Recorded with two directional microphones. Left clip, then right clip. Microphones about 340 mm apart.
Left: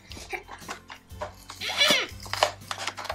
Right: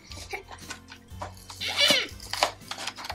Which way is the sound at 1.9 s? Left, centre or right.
Centre.